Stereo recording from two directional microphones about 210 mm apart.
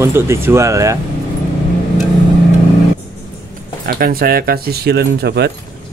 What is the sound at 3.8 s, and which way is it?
Speech, 45° right (ahead or behind).